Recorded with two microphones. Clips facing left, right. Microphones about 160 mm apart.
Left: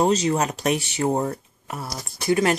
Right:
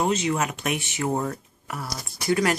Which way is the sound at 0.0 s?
35° left (ahead or behind).